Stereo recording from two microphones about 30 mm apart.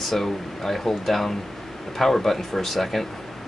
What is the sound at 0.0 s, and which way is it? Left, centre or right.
Speech, centre.